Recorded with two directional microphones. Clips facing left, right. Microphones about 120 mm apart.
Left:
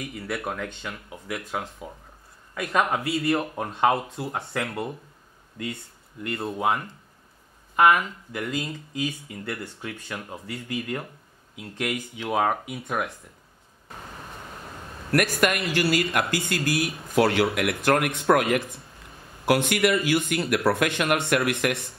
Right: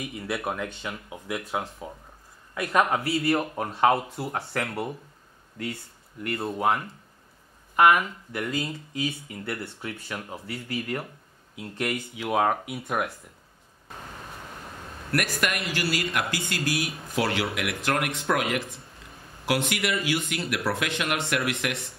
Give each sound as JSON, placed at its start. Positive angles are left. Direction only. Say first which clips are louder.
{"t": 0.0, "sound": "speech", "louder": "even", "side_deg": -15}
{"t": 6.2, "sound": "speech", "louder": "even", "side_deg": 0}
{"t": 15.1, "sound": "speech", "louder": "left 5 dB", "side_deg": 50}